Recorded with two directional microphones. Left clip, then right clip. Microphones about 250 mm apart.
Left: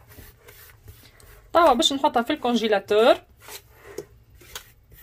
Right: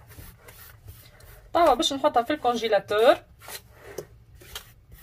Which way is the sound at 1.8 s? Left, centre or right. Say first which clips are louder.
Left 2 dB; left.